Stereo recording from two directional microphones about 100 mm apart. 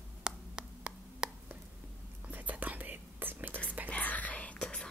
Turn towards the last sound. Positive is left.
turn(degrees=10)  # may be behind; listen again after turning